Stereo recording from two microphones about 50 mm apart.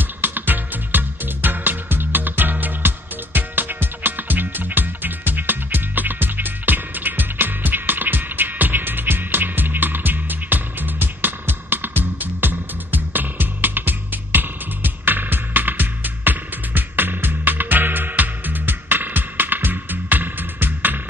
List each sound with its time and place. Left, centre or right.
0.0 s music: right